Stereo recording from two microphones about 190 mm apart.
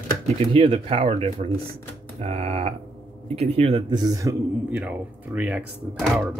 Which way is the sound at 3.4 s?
30° right (ahead or behind).